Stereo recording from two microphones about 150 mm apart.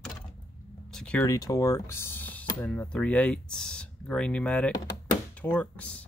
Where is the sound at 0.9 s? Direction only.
5° left (ahead or behind).